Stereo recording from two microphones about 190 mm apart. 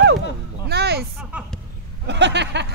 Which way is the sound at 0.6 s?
60° right (ahead or behind).